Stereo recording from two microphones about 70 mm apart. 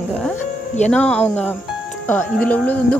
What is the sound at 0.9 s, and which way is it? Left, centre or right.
Speech, centre.